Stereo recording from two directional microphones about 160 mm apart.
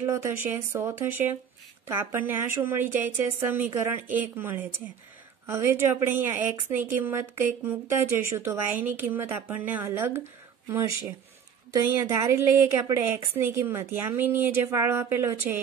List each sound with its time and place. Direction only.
0.0 s a woman's voice: 15° right (ahead or behind)